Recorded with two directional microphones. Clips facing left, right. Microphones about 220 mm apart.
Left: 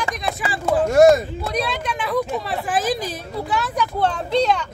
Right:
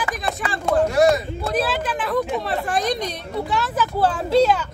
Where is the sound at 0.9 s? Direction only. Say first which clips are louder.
Left 7 dB; 45° left (ahead or behind).